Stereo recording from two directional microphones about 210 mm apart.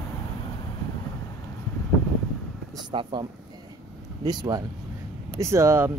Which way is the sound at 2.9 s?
20° right (ahead or behind).